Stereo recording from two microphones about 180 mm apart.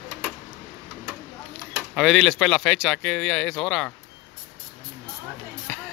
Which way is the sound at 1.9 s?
Centre (ahead or behind).